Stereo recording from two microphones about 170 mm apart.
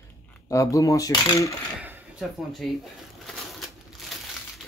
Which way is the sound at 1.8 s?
5° right (ahead or behind).